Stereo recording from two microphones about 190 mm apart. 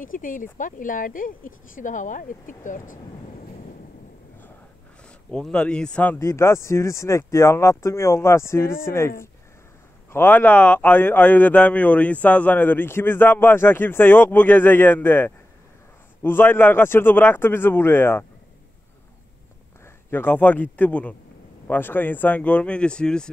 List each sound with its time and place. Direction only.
0.0 s speech: 45° left (ahead or behind)
5.3 s speech: 5° left (ahead or behind)
10.1 s speech: 10° left (ahead or behind)
20.1 s speech: 10° left (ahead or behind)